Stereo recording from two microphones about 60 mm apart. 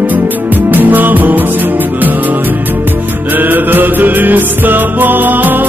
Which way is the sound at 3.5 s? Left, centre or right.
Right.